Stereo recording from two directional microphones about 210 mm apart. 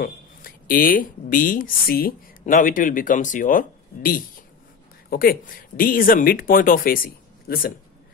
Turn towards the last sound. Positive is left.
turn(degrees=45)  # may be behind; listen again after turning